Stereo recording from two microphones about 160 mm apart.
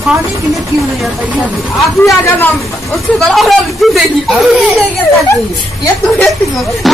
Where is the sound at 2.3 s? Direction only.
15° left (ahead or behind).